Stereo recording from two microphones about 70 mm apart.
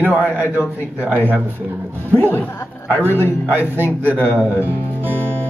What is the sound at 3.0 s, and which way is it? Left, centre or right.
Speech, right.